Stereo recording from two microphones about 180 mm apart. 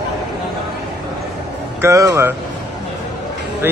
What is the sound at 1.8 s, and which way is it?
Speech, 15° right (ahead or behind).